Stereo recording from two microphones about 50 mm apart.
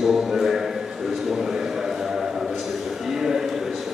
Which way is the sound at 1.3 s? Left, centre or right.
Centre.